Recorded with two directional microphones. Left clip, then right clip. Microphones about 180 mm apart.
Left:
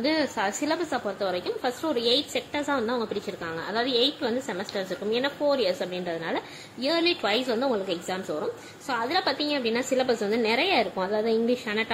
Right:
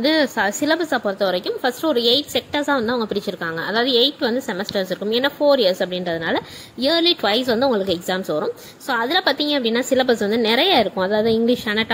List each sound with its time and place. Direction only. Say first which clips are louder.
0.0 s a woman's voice: right 8 dB; 30° right (ahead or behind)